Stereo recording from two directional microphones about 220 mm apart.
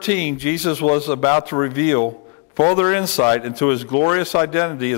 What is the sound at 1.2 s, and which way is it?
A man's voice, 20° left (ahead or behind).